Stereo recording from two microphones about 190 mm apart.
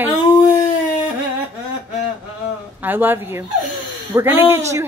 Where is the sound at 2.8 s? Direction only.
10° right (ahead or behind).